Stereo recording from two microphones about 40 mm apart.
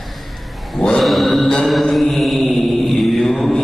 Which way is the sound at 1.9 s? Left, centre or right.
Centre.